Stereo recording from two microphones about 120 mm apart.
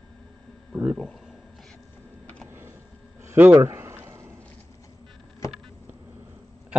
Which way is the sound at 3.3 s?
15° right (ahead or behind).